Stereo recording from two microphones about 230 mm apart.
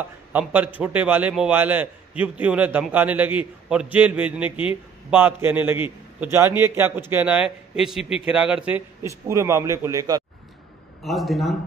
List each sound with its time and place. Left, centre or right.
0.0 s a man's voice: centre
11.1 s a man's voice: centre